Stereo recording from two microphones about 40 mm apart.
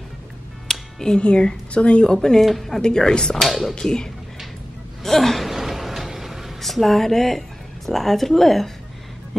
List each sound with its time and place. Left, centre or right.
0.7 s music: centre
1.1 s a woman's voice: left
2.4 s speech: centre
3.3 s speech: centre
3.7 s a woman's voice: centre
5.0 s gasp: centre
6.6 s a woman's voice: centre